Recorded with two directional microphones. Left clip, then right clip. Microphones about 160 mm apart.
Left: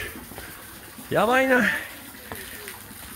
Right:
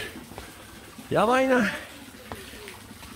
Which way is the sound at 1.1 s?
10° right (ahead or behind).